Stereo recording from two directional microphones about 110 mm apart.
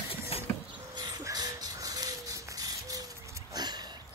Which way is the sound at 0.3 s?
65° left (ahead or behind).